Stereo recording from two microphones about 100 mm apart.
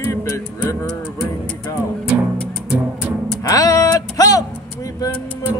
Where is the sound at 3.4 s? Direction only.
35° left (ahead or behind).